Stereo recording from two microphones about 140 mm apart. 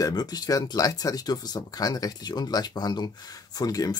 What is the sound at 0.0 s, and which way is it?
Speech, 30° left (ahead or behind).